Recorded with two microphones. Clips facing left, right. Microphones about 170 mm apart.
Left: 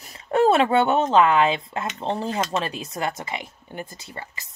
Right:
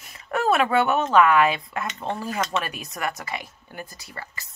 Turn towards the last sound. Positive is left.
turn(degrees=20)  # may be behind; listen again after turning